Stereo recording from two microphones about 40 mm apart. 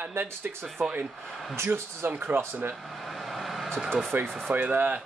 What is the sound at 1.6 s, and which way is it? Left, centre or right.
Speech, right.